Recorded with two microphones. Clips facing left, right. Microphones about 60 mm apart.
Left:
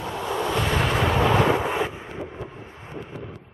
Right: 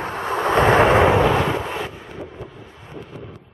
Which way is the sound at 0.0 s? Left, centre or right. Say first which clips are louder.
Right 4 dB; right.